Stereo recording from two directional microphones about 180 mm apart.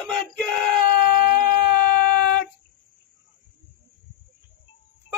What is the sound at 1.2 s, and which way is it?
Baby cry, 50° left (ahead or behind).